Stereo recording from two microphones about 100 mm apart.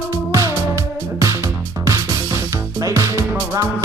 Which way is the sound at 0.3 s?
30° right (ahead or behind).